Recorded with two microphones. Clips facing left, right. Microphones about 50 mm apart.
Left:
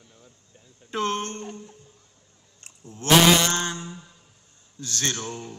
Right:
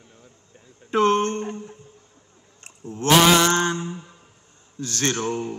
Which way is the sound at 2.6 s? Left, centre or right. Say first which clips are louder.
Right 8 dB; right.